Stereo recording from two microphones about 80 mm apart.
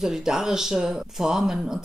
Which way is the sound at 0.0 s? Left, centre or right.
Centre.